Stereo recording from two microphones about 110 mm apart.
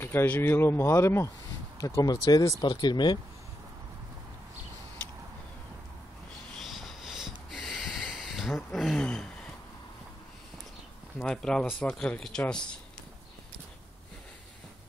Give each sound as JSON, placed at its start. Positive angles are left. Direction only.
{"t": 0.0, "sound": "speech", "side_deg": 20}
{"t": 6.6, "sound": "a sound", "side_deg": 0}
{"t": 11.2, "sound": "speech", "side_deg": 5}